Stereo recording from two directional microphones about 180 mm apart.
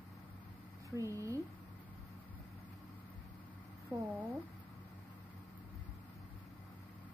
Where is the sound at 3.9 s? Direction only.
20° right (ahead or behind).